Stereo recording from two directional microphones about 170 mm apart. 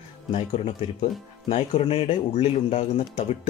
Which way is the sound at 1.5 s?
35° left (ahead or behind).